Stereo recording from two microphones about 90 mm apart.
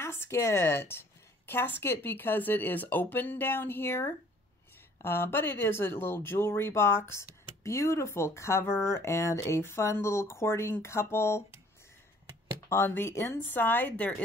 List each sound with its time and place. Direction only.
0.0 s a woman's voice: 25° left (ahead or behind)
12.6 s a woman's voice: 30° left (ahead or behind)